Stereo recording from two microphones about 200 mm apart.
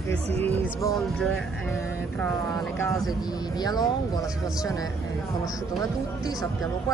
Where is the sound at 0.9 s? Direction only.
Centre (ahead or behind).